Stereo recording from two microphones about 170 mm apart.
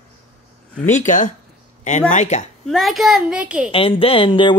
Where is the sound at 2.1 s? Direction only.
45° left (ahead or behind).